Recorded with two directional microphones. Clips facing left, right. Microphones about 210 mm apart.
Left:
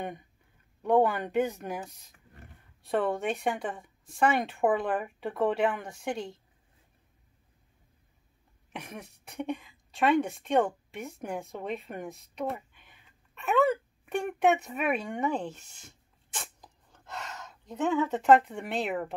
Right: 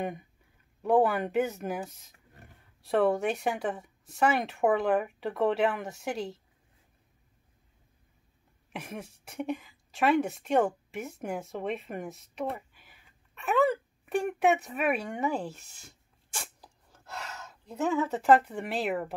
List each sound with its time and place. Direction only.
0.8 s a woman's voice: 5° right (ahead or behind)
8.8 s speech: centre (ahead or behind)
16.6 s a sound: 5° right (ahead or behind)